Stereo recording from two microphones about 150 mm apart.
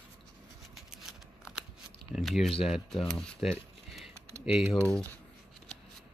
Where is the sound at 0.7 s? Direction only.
5° right (ahead or behind).